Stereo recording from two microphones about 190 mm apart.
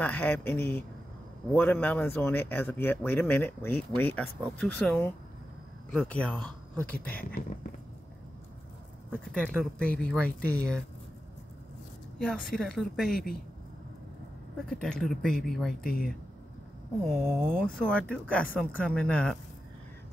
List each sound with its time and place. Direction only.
0.0 s speech: 10° left (ahead or behind)
7.2 s speech: 45° left (ahead or behind)
9.1 s speech: 5° left (ahead or behind)
12.2 s speech: centre (ahead or behind)
13.1 s speech: 50° left (ahead or behind)
14.7 s speech: 5° left (ahead or behind)
15.8 s speech: 50° left (ahead or behind)
17.0 s speech: centre (ahead or behind)